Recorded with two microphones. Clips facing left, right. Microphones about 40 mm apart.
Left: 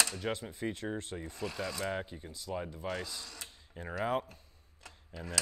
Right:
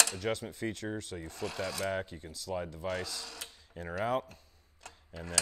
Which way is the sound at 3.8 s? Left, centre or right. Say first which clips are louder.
Right 2 dB; centre.